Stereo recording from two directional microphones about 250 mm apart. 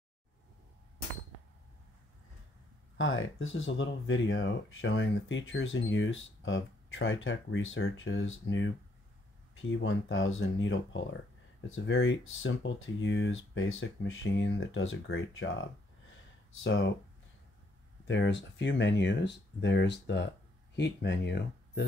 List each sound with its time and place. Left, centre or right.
3.0 s speech: left
16.6 s speech: left
18.0 s speech: left